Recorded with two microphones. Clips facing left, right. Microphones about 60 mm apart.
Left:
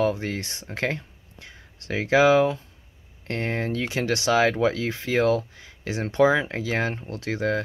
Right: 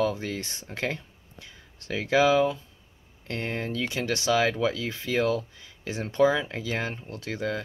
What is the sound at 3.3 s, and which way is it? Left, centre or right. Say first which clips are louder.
Speech: left 4 dB; left.